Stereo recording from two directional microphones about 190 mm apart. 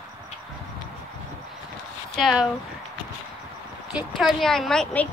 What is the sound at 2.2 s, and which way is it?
Speech, centre (ahead or behind).